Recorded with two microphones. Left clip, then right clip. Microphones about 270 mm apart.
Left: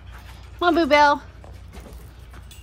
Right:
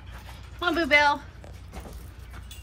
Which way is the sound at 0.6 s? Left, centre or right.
Centre.